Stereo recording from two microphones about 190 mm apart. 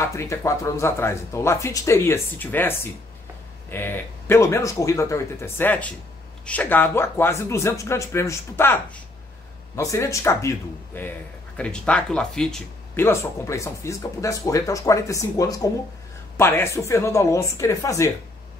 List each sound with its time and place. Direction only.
0.0 s speech: 15° left (ahead or behind)